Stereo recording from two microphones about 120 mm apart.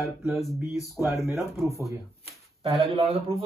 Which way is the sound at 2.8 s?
55° right (ahead or behind).